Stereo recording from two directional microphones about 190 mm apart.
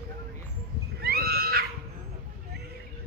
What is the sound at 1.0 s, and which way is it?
Wild animals, 55° right (ahead or behind).